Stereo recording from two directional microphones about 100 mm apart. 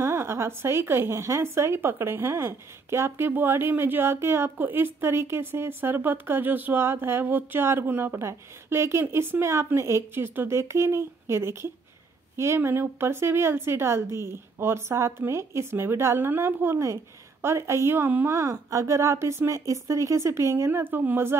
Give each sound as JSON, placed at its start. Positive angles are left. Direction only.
{"t": 0.0, "sound": "a woman's voice", "side_deg": -25}